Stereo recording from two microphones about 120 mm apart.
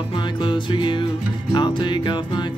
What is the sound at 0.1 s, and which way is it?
Music, 40° left (ahead or behind).